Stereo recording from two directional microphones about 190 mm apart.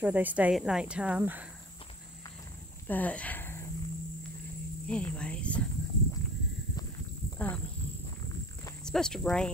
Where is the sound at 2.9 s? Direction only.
10° left (ahead or behind).